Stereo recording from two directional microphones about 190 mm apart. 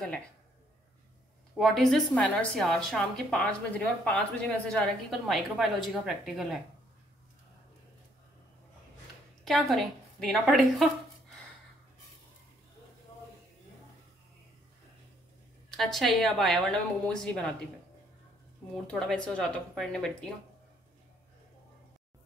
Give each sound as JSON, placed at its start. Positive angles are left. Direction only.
{"t": 1.6, "sound": "a woman's voice", "side_deg": 0}
{"t": 9.4, "sound": "a woman's voice", "side_deg": 0}
{"t": 15.7, "sound": "a woman's voice", "side_deg": 0}
{"t": 18.9, "sound": "a woman's voice", "side_deg": 5}